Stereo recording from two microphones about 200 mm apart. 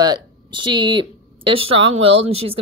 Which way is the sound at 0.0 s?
20° right (ahead or behind).